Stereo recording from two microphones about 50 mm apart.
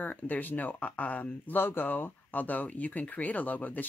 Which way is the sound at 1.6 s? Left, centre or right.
Left.